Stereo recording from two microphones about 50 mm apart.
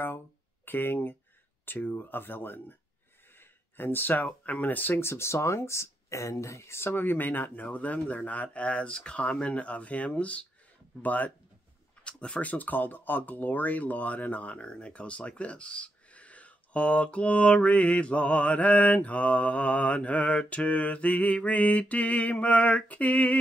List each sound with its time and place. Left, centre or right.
0.7 s speech: left
5.0 s speech: left
12.0 s speech: left